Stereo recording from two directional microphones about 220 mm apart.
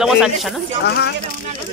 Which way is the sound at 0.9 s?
50° left (ahead or behind).